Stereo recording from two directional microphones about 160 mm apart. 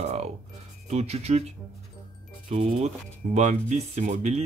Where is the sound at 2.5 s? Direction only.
40° right (ahead or behind).